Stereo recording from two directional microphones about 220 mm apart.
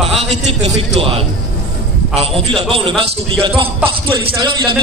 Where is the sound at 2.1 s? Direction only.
25° right (ahead or behind).